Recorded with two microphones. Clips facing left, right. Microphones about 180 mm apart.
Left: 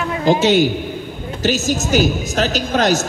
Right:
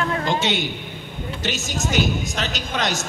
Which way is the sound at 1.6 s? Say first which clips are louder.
Left 7 dB; 5° left (ahead or behind).